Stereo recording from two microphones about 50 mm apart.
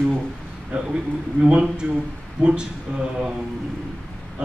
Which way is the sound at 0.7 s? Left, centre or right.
Centre.